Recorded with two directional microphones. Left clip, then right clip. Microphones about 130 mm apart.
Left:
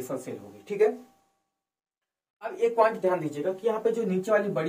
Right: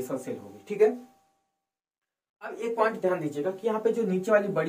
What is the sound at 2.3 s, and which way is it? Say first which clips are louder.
Speech: left 4 dB; 30° right (ahead or behind).